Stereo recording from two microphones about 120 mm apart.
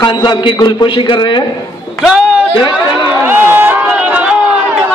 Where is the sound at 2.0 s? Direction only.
5° right (ahead or behind).